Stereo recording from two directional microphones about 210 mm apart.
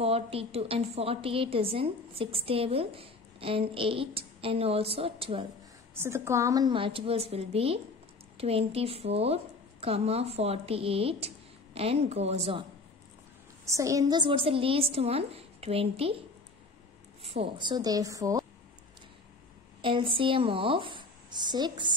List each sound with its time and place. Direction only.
0.0 s a woman's voice: 30° right (ahead or behind)
5.9 s a woman's voice: 10° right (ahead or behind); by 12.6 s 30° right (ahead or behind)
13.7 s a woman's voice: 15° right (ahead or behind)
17.2 s a woman's voice: 25° right (ahead or behind)
19.8 s a woman's voice: 25° right (ahead or behind)